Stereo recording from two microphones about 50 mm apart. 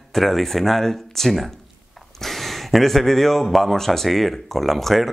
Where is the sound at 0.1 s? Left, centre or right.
Centre.